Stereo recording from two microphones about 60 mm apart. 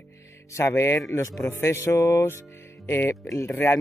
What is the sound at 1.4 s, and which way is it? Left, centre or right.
Speech, left.